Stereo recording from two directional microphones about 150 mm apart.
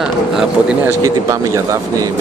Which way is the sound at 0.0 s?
5° right (ahead or behind).